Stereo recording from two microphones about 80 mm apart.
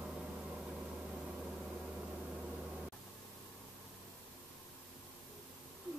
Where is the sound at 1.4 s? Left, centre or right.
Centre.